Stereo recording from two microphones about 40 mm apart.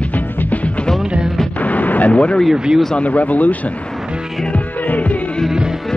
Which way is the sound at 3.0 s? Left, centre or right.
Left.